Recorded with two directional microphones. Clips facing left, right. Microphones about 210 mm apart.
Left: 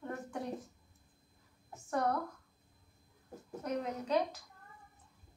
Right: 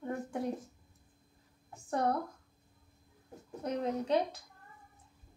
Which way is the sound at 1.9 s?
30° right (ahead or behind).